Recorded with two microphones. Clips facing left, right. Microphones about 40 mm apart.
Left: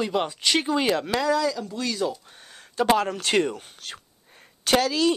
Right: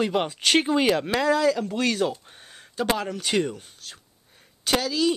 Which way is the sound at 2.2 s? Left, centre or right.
Centre.